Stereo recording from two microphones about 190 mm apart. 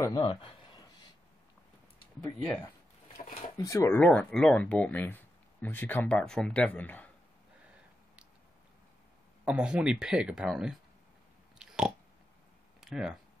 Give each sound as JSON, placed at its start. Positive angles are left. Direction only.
{"t": 0.0, "sound": "speech", "side_deg": 25}
{"t": 2.2, "sound": "speech", "side_deg": 5}
{"t": 3.5, "sound": "speech", "side_deg": 15}
{"t": 9.4, "sound": "speech", "side_deg": -5}
{"t": 11.5, "sound": "a sound", "side_deg": -5}
{"t": 12.8, "sound": "speech", "side_deg": 0}